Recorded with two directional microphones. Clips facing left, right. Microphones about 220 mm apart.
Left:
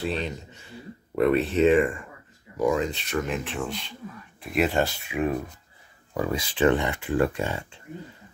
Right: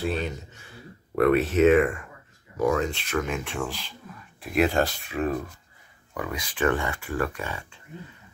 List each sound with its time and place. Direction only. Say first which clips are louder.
0.0 s speech: right 1 dB; centre (ahead or behind)
6.1 s speech: left 5 dB; 30° left (ahead or behind)